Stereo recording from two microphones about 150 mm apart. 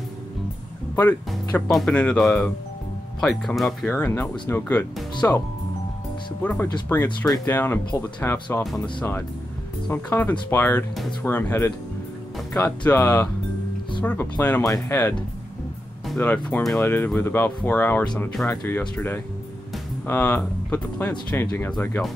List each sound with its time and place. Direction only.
1.7 s speech: centre (ahead or behind)
3.9 s speech: 15° left (ahead or behind)
6.4 s speech: 10° left (ahead or behind)
9.8 s speech: 10° left (ahead or behind)
16.2 s speech: 10° left (ahead or behind)
18.5 s speech: 15° left (ahead or behind)